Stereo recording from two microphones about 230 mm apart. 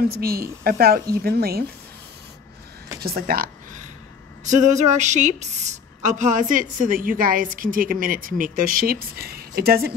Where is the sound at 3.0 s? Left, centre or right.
Right.